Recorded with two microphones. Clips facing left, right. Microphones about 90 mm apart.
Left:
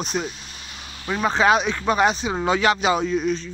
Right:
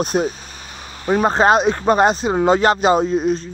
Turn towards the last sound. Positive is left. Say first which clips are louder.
# right 5 dB
turn(degrees=-40)  # may be behind; listen again after turning